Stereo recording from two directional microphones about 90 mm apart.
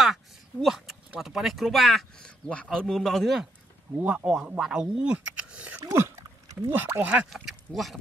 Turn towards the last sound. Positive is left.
turn(degrees=0)  # may be behind; listen again after turning